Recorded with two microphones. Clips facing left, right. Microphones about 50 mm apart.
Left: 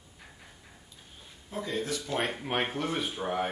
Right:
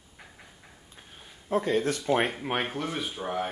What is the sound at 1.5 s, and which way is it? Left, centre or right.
Speech, right.